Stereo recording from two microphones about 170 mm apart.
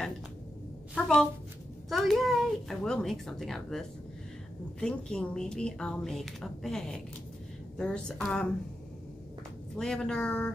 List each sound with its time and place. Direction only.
0.9 s speech: 5° left (ahead or behind)
9.8 s speech: 5° left (ahead or behind)